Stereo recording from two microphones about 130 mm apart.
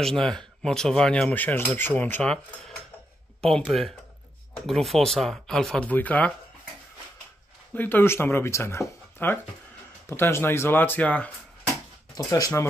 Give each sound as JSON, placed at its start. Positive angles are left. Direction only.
{"t": 0.0, "sound": "speech", "side_deg": 5}
{"t": 3.4, "sound": "speech", "side_deg": 0}
{"t": 7.7, "sound": "speech", "side_deg": 15}
{"t": 12.2, "sound": "speech", "side_deg": 25}